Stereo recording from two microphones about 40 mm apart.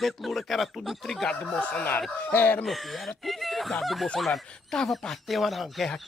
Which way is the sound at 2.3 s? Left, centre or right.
Left.